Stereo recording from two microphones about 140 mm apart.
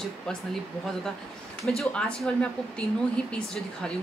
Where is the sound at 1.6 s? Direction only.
5° left (ahead or behind).